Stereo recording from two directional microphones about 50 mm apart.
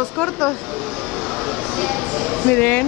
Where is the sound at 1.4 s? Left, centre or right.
Centre.